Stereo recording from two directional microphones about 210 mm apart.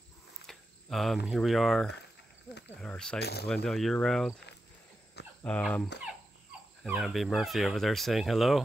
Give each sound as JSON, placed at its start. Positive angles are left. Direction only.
{"t": 0.5, "sound": "speech", "side_deg": 0}
{"t": 3.2, "sound": "speech", "side_deg": 50}
{"t": 3.4, "sound": "speech", "side_deg": 0}
{"t": 5.4, "sound": "speech", "side_deg": 5}